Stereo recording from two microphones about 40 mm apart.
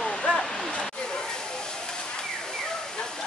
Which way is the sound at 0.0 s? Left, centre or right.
Left.